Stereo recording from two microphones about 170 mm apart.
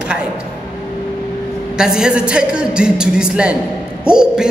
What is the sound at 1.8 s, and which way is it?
A man's voice, 5° right (ahead or behind).